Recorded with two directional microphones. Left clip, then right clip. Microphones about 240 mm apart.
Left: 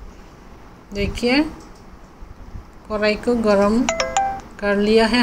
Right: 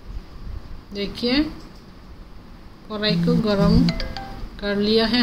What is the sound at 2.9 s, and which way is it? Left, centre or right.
Speech, centre.